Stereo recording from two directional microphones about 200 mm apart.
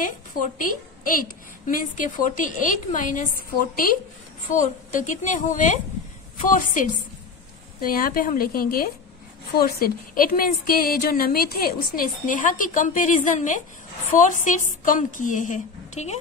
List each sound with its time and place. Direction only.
0.6 s a woman's voice: 45° left (ahead or behind)